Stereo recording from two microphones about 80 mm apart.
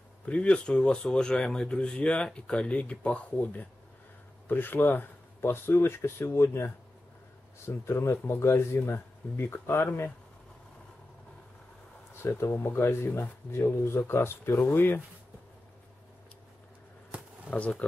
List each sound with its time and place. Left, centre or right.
0.2 s speech: centre; by 10.1 s left
12.1 s speech: left
17.5 s speech: centre